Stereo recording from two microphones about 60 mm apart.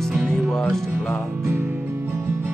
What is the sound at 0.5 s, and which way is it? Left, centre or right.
Music, centre.